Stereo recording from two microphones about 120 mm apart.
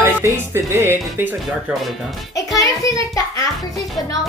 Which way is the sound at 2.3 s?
30° left (ahead or behind).